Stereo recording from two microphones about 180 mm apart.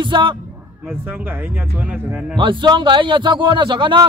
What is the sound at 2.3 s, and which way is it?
A man's voice, 25° right (ahead or behind).